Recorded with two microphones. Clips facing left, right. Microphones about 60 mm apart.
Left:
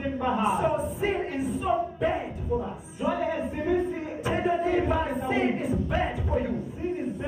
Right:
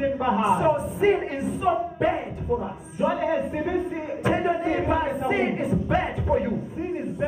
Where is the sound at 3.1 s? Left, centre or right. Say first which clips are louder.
Right 4 dB; centre.